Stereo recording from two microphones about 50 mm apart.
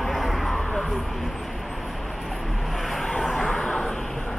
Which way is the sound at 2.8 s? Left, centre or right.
Centre.